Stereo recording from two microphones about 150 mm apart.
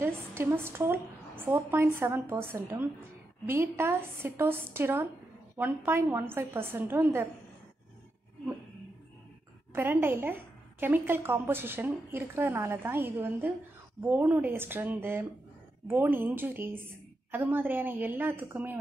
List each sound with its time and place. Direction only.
0.0 s a woman's voice: 15° right (ahead or behind)
9.8 s a woman's voice: 15° right (ahead or behind)